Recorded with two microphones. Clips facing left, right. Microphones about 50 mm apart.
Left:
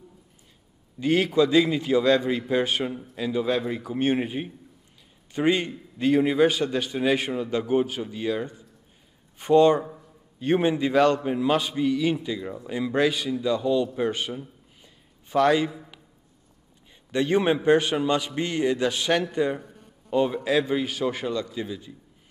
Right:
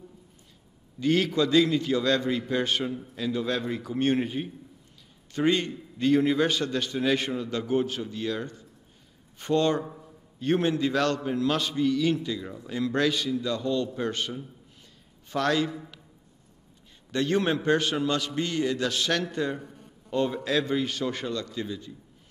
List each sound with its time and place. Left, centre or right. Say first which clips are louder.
0.9 s a man's voice: left 3 dB; centre
17.1 s a man's voice: left 3 dB; centre